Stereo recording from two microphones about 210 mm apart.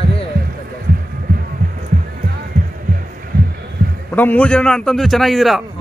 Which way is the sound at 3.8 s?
45° right (ahead or behind).